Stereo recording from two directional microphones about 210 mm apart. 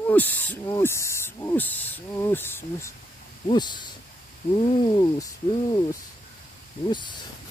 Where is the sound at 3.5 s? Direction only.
20° left (ahead or behind).